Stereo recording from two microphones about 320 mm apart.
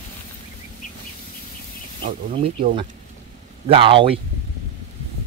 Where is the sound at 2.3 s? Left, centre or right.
Centre.